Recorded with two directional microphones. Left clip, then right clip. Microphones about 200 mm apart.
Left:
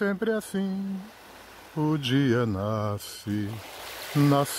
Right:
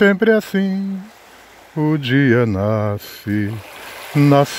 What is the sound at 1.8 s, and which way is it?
Speech, 20° right (ahead or behind).